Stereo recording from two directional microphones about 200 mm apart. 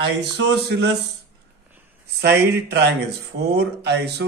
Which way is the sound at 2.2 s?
55° right (ahead or behind).